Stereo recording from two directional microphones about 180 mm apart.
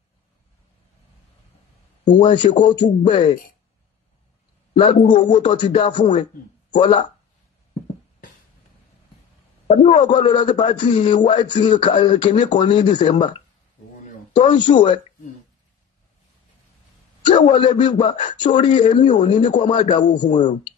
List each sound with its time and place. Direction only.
2.1 s speech: 25° left (ahead or behind)
5.3 s speech: 25° left (ahead or behind)
9.7 s a man's voice: 30° left (ahead or behind)
12.3 s a man's voice: 40° left (ahead or behind)
12.5 s speech: 25° left (ahead or behind)
17.5 s speech: 25° left (ahead or behind)